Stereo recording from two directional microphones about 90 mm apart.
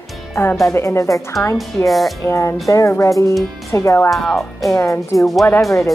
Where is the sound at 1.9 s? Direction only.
Centre (ahead or behind).